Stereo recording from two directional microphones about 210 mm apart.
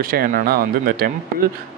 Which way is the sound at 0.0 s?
45° right (ahead or behind).